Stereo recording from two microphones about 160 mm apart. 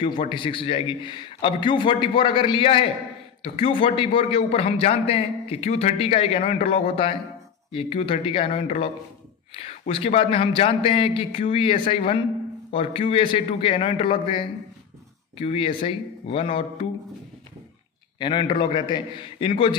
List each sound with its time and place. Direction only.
0.0 s a man's voice: 30° left (ahead or behind)
18.2 s a man's voice: 30° left (ahead or behind)